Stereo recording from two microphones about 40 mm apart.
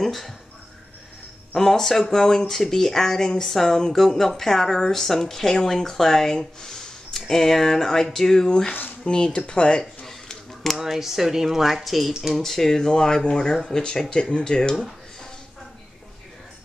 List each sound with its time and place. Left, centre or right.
0.0 s speech: centre
1.5 s speech: centre
10.8 s speech: centre